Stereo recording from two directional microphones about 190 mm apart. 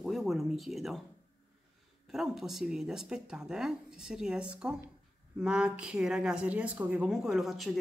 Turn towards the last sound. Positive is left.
turn(degrees=0)  # may be behind; listen again after turning